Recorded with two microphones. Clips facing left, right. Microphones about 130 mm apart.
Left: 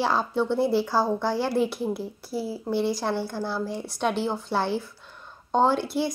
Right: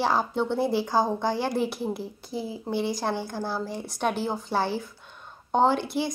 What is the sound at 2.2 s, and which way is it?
Speech, 20° right (ahead or behind).